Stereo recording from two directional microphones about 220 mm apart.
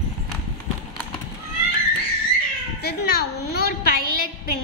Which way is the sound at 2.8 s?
45° left (ahead or behind).